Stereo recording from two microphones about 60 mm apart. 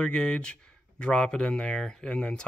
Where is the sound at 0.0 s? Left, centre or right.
Centre.